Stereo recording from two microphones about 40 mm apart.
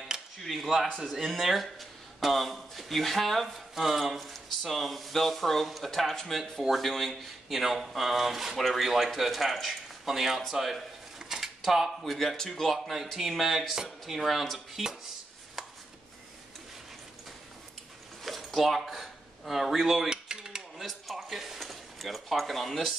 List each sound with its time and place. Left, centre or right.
0.4 s speech: centre
18.2 s a sound: centre
20.2 s dishes: centre
20.7 s speech: centre